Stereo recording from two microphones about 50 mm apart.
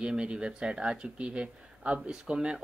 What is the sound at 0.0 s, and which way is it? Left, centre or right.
Speech, centre.